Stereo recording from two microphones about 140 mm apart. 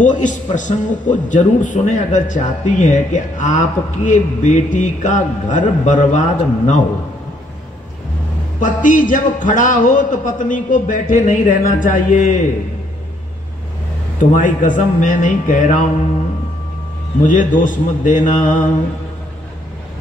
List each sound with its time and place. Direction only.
0.0 s a man's voice: 65° left (ahead or behind)
8.5 s a man's voice: 70° left (ahead or behind)
14.3 s speech: 70° left (ahead or behind)
17.3 s speech: 70° left (ahead or behind)